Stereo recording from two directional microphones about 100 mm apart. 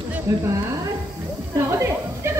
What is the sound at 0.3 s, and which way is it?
Speech, 30° right (ahead or behind).